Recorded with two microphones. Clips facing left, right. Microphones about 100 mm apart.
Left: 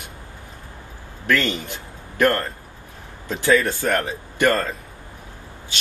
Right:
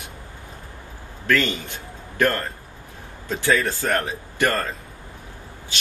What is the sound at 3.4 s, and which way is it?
Speech, 15° left (ahead or behind).